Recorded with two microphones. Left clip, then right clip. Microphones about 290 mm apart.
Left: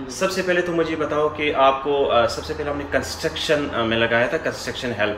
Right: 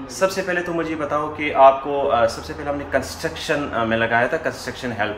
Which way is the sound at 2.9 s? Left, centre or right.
Centre.